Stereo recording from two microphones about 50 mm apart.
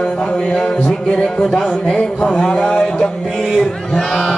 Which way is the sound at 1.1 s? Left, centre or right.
Centre.